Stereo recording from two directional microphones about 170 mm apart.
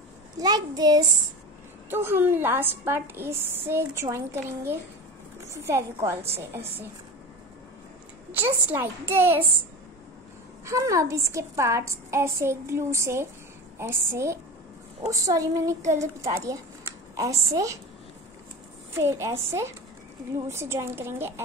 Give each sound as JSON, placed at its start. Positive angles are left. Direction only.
{"t": 0.4, "sound": "a woman's voice", "side_deg": -25}
{"t": 1.9, "sound": "a woman's voice", "side_deg": -15}
{"t": 8.3, "sound": "a woman's voice", "side_deg": -10}
{"t": 10.6, "sound": "a woman's voice", "side_deg": -20}
{"t": 18.9, "sound": "a woman's voice", "side_deg": -15}
{"t": 20.4, "sound": "a woman's voice", "side_deg": -15}